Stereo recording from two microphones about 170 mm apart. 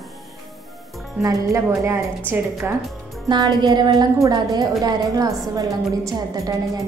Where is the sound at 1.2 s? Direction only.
10° right (ahead or behind).